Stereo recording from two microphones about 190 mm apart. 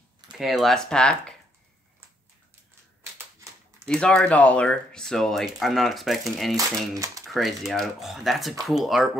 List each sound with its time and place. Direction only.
0.3 s speech: centre (ahead or behind)
3.8 s speech: 5° left (ahead or behind)
6.9 s speech: 15° right (ahead or behind)
7.2 s speech: centre (ahead or behind)